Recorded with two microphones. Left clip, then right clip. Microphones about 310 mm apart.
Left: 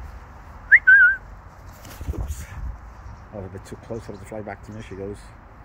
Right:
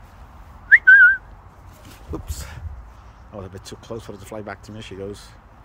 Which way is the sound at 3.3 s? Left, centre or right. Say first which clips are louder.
Right 1 dB; centre.